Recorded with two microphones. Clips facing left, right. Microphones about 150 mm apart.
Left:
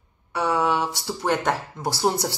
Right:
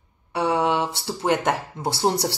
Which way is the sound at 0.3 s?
25° right (ahead or behind).